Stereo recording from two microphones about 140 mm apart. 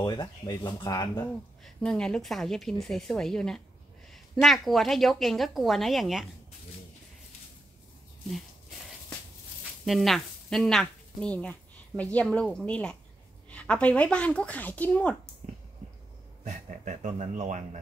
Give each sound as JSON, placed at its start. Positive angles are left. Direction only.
{"t": 0.0, "sound": "speech", "side_deg": 30}
{"t": 1.6, "sound": "a woman's voice", "side_deg": 5}
{"t": 9.8, "sound": "speech", "side_deg": 0}
{"t": 16.4, "sound": "speech", "side_deg": -55}